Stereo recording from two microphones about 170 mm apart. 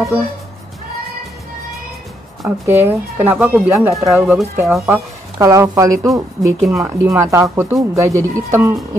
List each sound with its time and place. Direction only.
2.4 s speech: 15° right (ahead or behind)
6.6 s speech: centre (ahead or behind)
7.0 s speech: 15° right (ahead or behind)